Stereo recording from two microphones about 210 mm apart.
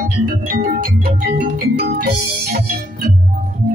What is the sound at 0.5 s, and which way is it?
Keyboard, 45° right (ahead or behind).